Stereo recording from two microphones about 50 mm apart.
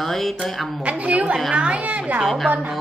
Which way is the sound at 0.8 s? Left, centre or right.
Right.